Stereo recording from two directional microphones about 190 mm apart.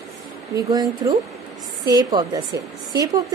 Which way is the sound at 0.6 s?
20° right (ahead or behind).